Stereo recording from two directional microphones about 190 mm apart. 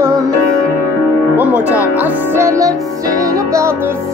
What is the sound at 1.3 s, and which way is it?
Music, 10° right (ahead or behind).